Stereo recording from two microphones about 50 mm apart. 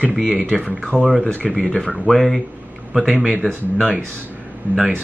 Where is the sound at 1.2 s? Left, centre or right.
Left; by 2.4 s centre.